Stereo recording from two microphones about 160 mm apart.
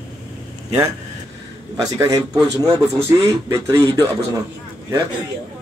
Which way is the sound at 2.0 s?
20° right (ahead or behind).